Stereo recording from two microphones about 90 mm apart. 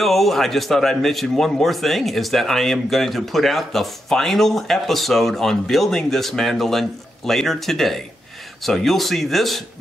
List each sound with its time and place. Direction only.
0.0 s a man's voice: centre (ahead or behind)